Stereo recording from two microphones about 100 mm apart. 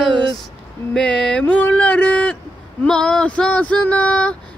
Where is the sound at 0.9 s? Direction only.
10° left (ahead or behind).